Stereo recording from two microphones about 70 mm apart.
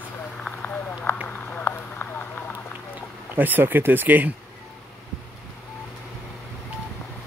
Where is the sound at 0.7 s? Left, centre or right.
Left.